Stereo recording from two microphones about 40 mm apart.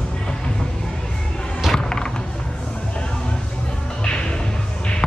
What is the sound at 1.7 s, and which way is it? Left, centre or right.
Music, left.